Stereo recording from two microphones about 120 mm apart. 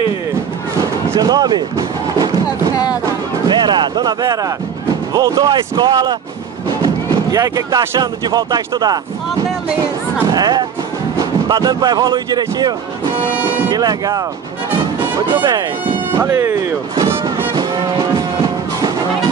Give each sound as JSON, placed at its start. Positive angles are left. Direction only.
{"t": 0.7, "sound": "music", "side_deg": -30}
{"t": 3.4, "sound": "speech", "side_deg": -40}
{"t": 6.8, "sound": "music", "side_deg": -30}
{"t": 8.0, "sound": "speech", "side_deg": -35}
{"t": 10.3, "sound": "speech", "side_deg": -35}
{"t": 16.2, "sound": "speech", "side_deg": -25}
{"t": 16.9, "sound": "music", "side_deg": -25}